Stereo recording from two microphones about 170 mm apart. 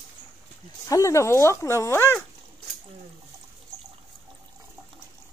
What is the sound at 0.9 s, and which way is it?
Speech, 15° left (ahead or behind).